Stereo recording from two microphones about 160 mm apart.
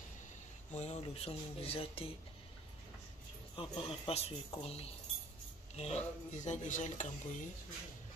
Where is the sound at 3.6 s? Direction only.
35° left (ahead or behind).